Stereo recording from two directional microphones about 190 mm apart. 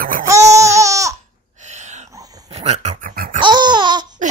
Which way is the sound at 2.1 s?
20° right (ahead or behind).